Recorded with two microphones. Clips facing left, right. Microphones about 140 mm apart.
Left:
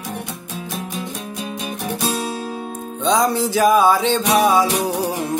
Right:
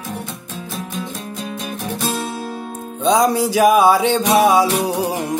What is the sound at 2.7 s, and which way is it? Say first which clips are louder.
Music: right 3 dB; 10° right (ahead or behind).